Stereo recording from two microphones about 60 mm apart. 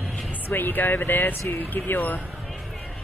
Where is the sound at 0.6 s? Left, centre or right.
Left.